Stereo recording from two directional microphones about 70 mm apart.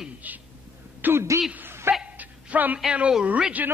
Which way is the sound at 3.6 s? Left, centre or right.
Right.